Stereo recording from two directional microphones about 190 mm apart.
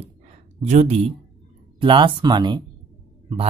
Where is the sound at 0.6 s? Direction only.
40° right (ahead or behind).